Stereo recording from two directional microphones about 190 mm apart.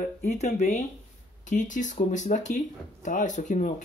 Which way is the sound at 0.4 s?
35° left (ahead or behind).